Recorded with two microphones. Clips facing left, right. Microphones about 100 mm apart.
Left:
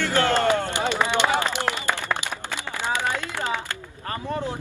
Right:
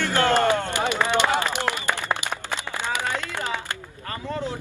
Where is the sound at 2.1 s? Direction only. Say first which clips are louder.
Right 1 dB; 25° right (ahead or behind).